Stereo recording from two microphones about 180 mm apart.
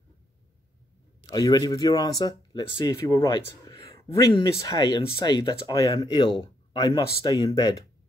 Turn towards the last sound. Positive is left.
turn(degrees=25)  # may be behind; listen again after turning